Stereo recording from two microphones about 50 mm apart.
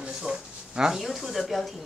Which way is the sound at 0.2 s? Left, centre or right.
Centre.